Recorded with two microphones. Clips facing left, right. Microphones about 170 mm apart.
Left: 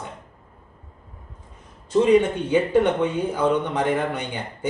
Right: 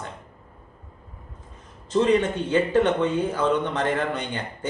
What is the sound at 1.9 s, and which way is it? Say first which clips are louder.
Speech: left 3 dB; 10° left (ahead or behind).